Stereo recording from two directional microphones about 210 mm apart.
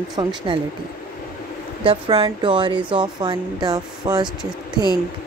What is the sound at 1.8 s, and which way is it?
Speech, 25° right (ahead or behind).